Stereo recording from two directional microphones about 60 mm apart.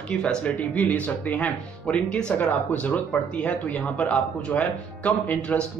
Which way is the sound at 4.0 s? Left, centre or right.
Left.